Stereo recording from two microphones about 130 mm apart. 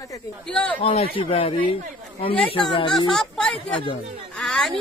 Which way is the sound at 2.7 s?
40° left (ahead or behind).